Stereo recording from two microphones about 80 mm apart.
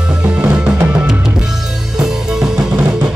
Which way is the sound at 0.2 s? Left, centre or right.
Centre.